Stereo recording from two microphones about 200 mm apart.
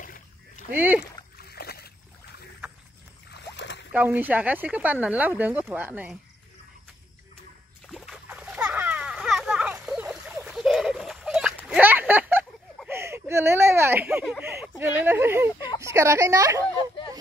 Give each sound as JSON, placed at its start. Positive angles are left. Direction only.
{"t": 0.0, "sound": "rowboat", "side_deg": 40}
{"t": 0.7, "sound": "speech", "side_deg": -10}
{"t": 1.4, "sound": "splash", "side_deg": 50}
{"t": 3.5, "sound": "a sound", "side_deg": 60}
{"t": 3.9, "sound": "speech", "side_deg": -10}
{"t": 7.8, "sound": "music", "side_deg": 0}
{"t": 8.3, "sound": "splash", "side_deg": -5}
{"t": 11.6, "sound": "a sound", "side_deg": -5}
{"t": 15.8, "sound": "a woman's voice", "side_deg": -15}
{"t": 16.7, "sound": "bow-wow", "side_deg": 25}